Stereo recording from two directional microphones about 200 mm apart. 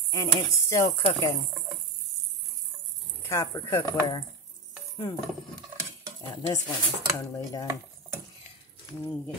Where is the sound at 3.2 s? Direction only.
15° left (ahead or behind).